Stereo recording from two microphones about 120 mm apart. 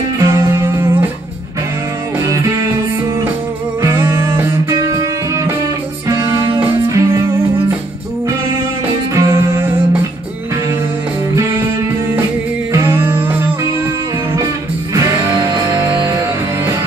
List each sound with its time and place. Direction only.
0.2 s music: 25° right (ahead or behind)
2.1 s music: 25° right (ahead or behind)
3.8 s music: 20° right (ahead or behind)
6.0 s music: 25° right (ahead or behind)
9.1 s music: 25° right (ahead or behind)
12.7 s music: 20° right (ahead or behind)
15.0 s music: 20° right (ahead or behind)
15.3 s music: 35° right (ahead or behind)
15.6 s music: 25° right (ahead or behind)